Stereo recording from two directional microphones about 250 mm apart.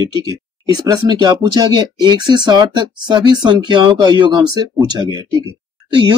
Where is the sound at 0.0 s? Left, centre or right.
Centre.